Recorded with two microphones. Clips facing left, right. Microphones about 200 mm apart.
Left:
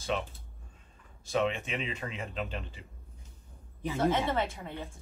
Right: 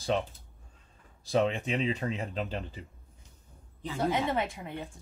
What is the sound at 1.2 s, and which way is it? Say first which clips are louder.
Speech: right 3 dB; 35° right (ahead or behind).